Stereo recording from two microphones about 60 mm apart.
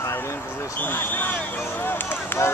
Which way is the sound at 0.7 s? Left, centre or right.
Left.